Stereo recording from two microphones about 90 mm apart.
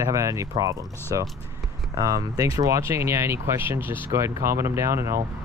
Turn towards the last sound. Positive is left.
turn(degrees=-30)  # may be behind; listen again after turning